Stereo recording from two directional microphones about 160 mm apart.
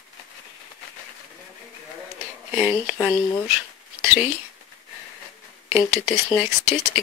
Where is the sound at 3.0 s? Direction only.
10° left (ahead or behind).